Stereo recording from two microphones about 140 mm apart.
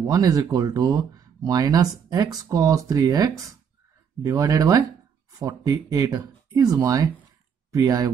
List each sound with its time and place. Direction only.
0.0 s speech: 25° right (ahead or behind)